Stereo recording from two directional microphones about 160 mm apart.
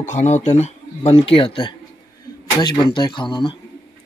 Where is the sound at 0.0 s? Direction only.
50° left (ahead or behind); by 3.5 s 30° left (ahead or behind).